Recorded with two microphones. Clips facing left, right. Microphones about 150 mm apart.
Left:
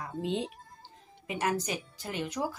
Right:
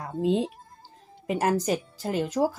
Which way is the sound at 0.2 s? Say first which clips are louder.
Right 9 dB; 40° right (ahead or behind).